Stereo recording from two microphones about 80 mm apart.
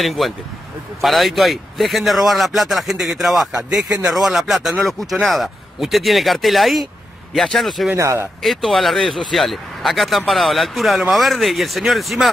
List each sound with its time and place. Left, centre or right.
0.0 s speech: centre
3.7 s speech: right
4.1 s speech: centre
7.9 s speech: right
8.4 s speech: centre